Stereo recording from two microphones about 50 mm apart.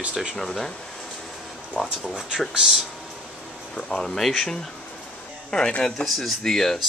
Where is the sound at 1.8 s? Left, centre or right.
Centre.